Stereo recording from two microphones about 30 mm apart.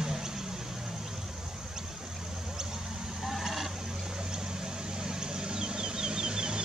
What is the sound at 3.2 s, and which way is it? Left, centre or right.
Vehicle, centre.